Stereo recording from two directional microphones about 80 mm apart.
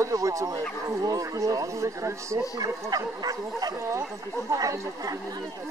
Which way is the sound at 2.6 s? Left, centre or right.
Right.